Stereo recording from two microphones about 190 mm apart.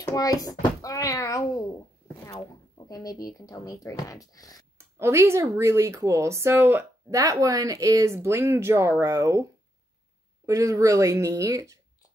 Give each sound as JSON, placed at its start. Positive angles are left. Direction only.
{"t": 0.0, "sound": "a child's voice", "side_deg": 20}
{"t": 2.9, "sound": "speech", "side_deg": 20}
{"t": 4.7, "sound": "speech", "side_deg": -15}